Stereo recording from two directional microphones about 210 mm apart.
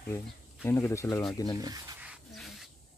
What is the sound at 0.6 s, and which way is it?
Speech, 10° left (ahead or behind).